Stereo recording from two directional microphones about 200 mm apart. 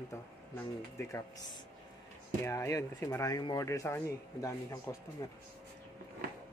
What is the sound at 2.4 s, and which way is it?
Speech, 15° left (ahead or behind).